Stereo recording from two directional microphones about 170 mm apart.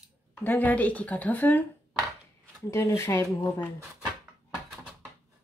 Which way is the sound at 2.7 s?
15° left (ahead or behind).